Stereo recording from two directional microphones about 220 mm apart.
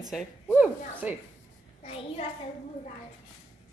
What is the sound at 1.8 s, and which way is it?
Speech, 30° left (ahead or behind).